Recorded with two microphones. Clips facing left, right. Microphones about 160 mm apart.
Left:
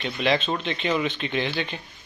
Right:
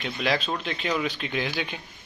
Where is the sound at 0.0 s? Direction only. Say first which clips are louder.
Left 3 dB; centre (ahead or behind).